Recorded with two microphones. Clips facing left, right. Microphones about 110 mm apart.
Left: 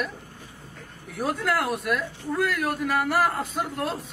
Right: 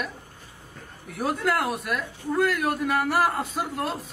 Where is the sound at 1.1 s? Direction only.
Centre (ahead or behind).